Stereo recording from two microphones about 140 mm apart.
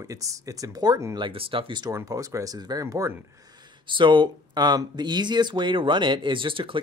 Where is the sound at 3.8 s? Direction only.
35° right (ahead or behind).